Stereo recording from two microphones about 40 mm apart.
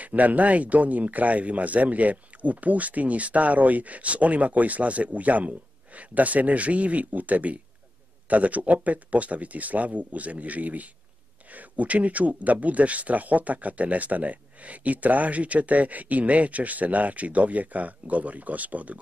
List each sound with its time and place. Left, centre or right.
0.0 s speech: right